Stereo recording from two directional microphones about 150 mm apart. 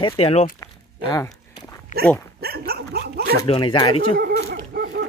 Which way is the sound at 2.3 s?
90° right.